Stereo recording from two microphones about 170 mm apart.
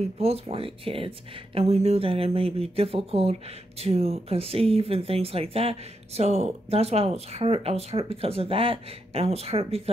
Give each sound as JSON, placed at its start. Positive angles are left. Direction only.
{"t": 0.0, "sound": "speech", "side_deg": -35}